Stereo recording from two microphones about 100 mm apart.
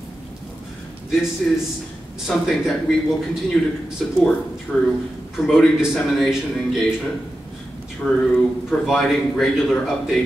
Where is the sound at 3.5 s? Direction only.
10° left (ahead or behind).